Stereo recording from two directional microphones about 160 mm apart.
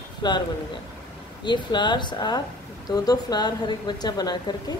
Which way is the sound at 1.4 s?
30° left (ahead or behind).